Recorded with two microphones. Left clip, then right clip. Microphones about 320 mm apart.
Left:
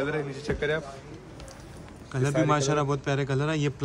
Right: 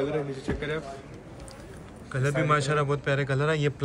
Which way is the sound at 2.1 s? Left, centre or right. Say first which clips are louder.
Even; centre.